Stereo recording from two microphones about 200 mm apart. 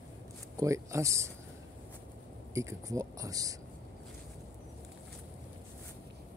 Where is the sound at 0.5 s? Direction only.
15° right (ahead or behind).